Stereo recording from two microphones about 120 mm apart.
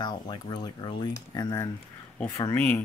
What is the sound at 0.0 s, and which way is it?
Speech, 40° left (ahead or behind).